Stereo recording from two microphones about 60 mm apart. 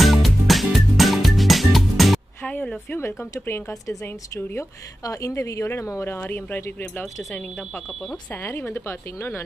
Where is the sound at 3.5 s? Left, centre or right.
Left.